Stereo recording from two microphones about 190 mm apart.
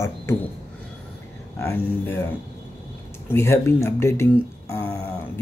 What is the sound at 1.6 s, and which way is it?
Speech, 10° left (ahead or behind).